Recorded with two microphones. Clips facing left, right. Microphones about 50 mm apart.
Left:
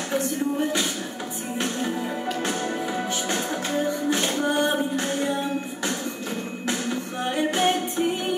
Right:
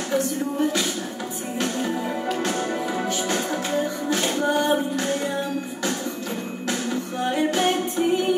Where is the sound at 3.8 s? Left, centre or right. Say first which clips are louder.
Left 2 dB; left.